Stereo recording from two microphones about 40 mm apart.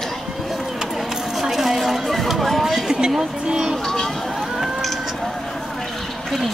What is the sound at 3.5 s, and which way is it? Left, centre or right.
Speech, centre.